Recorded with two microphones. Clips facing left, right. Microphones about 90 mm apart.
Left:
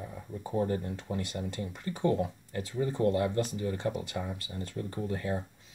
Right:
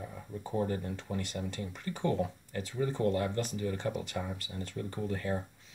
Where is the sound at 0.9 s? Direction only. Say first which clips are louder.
Left 2 dB; 15° left (ahead or behind).